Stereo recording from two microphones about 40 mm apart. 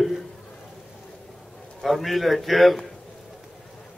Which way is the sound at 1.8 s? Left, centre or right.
Centre.